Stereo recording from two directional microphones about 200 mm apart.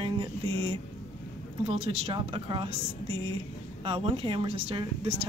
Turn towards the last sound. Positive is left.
turn(degrees=-30)  # may be behind; listen again after turning